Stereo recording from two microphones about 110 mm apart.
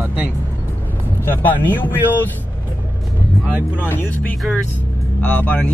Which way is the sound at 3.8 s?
15° left (ahead or behind).